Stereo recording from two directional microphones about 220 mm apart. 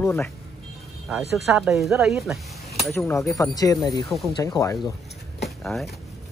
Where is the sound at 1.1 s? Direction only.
Centre (ahead or behind).